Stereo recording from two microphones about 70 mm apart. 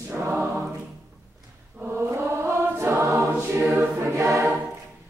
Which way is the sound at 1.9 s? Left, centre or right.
Right.